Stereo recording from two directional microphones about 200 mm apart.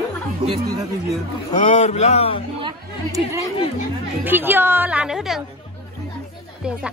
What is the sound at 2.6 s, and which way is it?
A woman's voice, 20° right (ahead or behind).